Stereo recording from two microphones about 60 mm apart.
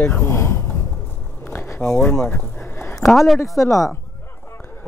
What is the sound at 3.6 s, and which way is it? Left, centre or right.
Speech, left.